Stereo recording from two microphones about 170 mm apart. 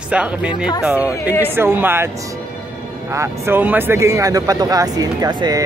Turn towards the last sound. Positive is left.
turn(degrees=-25)  # may be behind; listen again after turning